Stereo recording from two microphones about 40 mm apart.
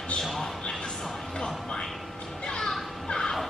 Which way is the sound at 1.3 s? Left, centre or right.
Centre.